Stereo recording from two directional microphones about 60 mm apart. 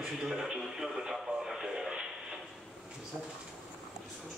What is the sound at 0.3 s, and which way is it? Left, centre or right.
Speech, centre.